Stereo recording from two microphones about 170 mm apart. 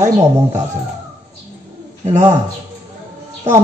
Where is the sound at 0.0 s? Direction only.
15° right (ahead or behind).